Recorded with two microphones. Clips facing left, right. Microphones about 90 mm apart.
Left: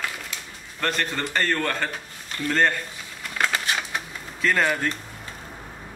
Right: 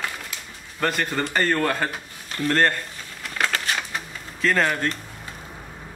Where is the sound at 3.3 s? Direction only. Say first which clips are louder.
Even; 5° left (ahead or behind).